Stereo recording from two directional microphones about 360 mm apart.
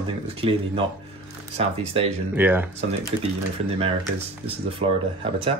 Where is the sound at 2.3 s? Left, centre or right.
Centre.